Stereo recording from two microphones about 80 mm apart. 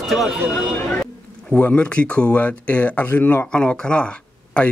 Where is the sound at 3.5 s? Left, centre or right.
Centre.